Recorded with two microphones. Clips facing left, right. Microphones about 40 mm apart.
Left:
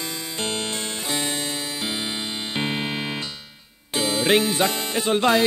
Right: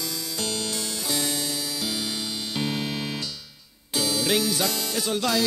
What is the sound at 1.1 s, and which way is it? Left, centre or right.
Music, left.